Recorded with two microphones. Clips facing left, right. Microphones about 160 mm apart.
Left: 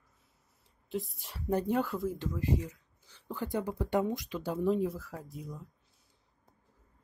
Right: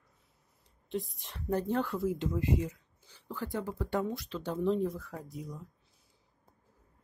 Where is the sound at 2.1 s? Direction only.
20° right (ahead or behind).